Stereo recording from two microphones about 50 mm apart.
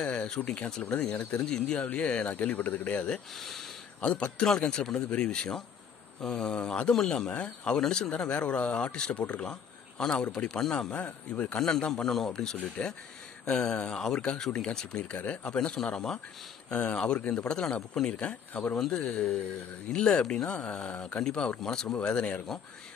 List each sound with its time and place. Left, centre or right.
0.0 s a sound: centre
0.4 s speech: left
3.3 s speech: centre
4.4 s speech: centre
7.2 s speech: left
11.0 s speech: left
11.6 s speech: centre
12.8 s speech: left
13.5 s speech: centre
16.7 s speech: left
18.8 s speech: centre